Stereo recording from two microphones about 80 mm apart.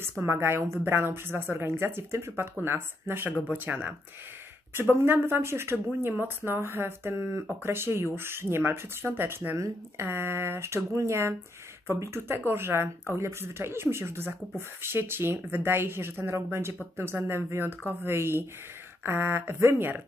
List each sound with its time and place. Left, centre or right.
0.2 s speech: right
5.0 s speech: right